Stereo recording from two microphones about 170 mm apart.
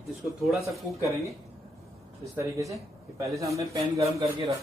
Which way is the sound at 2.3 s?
20° right (ahead or behind).